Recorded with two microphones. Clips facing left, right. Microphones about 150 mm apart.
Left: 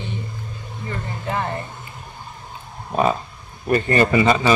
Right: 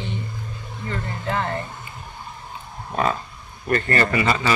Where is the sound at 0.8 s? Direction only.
20° left (ahead or behind).